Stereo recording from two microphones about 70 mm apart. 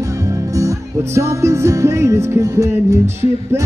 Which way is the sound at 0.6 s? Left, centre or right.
Right.